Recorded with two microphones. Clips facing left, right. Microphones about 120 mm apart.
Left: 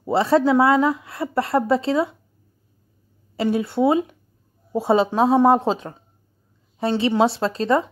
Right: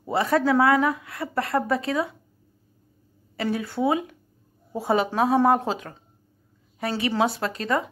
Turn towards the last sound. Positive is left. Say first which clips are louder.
# left 6 dB
turn(degrees=30)  # may be behind; listen again after turning